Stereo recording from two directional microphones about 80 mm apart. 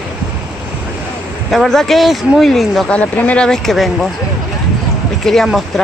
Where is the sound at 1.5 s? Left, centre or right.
Centre.